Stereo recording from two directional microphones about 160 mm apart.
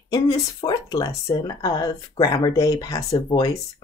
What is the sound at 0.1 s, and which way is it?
Speech, 25° left (ahead or behind).